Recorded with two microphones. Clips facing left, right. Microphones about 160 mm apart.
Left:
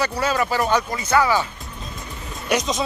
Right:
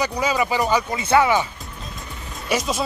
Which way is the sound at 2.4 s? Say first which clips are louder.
Left 1 dB; 5° right (ahead or behind).